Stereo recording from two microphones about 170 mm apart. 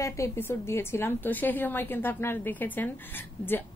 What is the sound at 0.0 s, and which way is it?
Speech, 15° left (ahead or behind).